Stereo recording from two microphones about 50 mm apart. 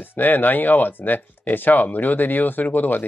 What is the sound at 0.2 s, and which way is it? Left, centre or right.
Speech, left.